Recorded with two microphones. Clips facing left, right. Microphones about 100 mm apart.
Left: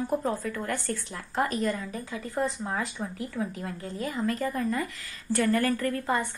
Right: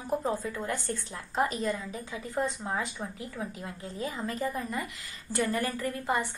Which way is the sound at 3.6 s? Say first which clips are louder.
Left 3 dB; 20° right (ahead or behind).